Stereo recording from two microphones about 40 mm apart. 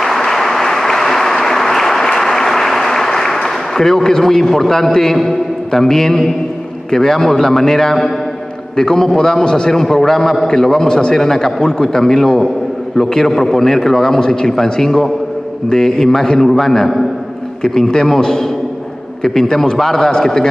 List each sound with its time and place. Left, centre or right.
0.0 s applause: centre
6.9 s a man's voice: centre